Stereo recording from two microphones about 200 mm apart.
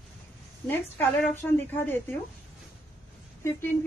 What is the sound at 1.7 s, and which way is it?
Speech, 10° left (ahead or behind).